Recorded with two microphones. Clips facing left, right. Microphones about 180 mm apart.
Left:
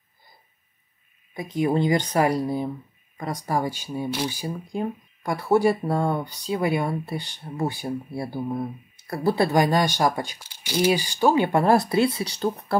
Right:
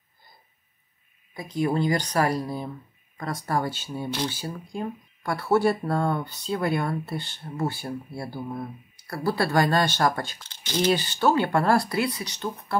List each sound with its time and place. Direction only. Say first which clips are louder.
1.3 s speech: left 2 dB; 20° left (ahead or behind)